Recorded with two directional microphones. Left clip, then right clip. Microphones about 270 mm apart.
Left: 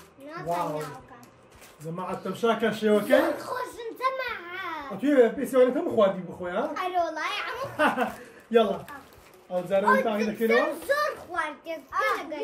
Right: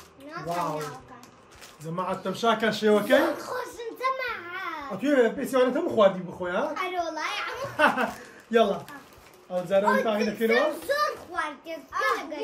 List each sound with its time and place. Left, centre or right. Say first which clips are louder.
0.3 s a child's voice: even; centre
2.0 s a child's voice: right 1 dB; centre